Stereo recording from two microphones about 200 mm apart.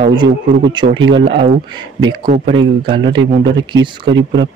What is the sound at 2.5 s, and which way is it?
Speech, 25° right (ahead or behind).